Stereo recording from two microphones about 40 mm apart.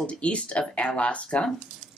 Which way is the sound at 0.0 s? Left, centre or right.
Left.